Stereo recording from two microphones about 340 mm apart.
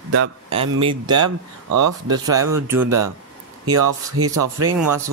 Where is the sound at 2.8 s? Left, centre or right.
Right.